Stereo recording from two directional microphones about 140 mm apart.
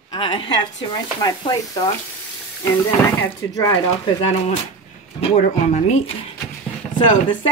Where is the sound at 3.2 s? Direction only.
20° left (ahead or behind).